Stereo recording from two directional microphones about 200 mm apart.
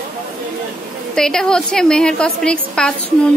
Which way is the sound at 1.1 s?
5° left (ahead or behind).